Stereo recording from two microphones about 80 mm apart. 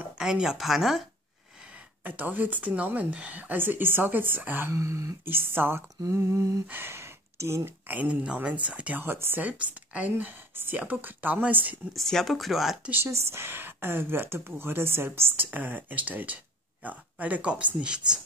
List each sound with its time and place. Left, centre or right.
0.2 s speech: centre
2.0 s speech: right
4.7 s a sound: right
6.7 s speech: right
7.9 s speech: centre
9.0 s speech: right
9.4 s speech: centre
11.9 s speech: centre
12.9 s speech: right; by 18.2 s centre